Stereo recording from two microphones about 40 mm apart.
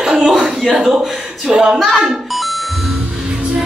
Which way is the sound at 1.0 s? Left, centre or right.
Centre.